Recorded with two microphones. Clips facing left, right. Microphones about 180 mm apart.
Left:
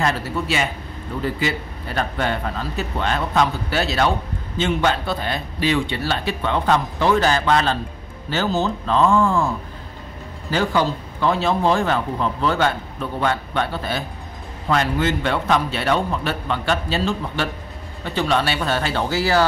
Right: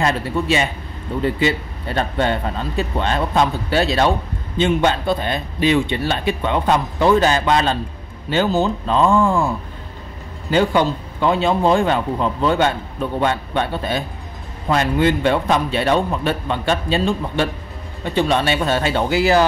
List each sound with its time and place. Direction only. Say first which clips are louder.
0.0 s speech: right 3 dB; 25° right (ahead or behind)
10.5 s speech: right 4 dB; 20° right (ahead or behind)